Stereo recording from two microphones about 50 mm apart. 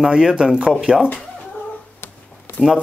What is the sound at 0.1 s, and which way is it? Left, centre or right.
Speech, centre.